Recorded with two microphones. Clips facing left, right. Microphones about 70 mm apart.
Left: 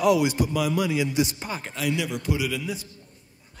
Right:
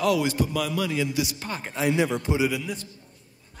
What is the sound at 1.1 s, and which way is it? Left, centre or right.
Speech, left.